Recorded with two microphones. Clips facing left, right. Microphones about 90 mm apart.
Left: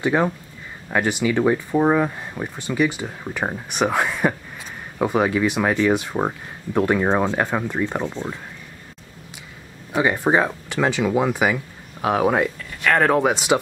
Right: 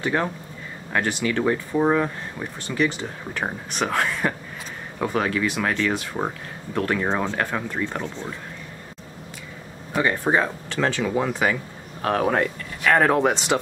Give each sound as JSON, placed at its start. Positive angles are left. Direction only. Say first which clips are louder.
{"t": 0.0, "sound": "speech", "louder": "left 4 dB", "side_deg": 15}
{"t": 9.9, "sound": "speech", "louder": "left 3 dB", "side_deg": 15}
{"t": 12.8, "sound": "speech", "louder": "left 1 dB", "side_deg": 0}